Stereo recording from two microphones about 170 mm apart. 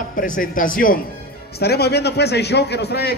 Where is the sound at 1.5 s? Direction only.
70° left (ahead or behind).